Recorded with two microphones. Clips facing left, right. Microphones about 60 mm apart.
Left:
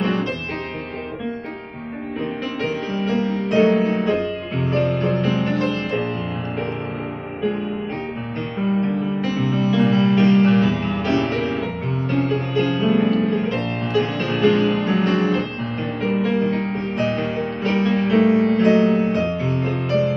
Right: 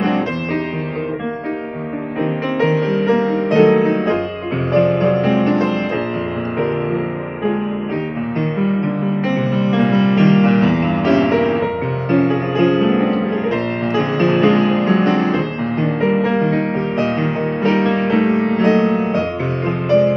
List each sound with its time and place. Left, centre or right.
2.9 s music: right
9.2 s music: right
14.7 s music: right